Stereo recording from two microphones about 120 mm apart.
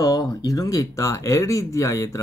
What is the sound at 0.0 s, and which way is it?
Speech, 30° left (ahead or behind).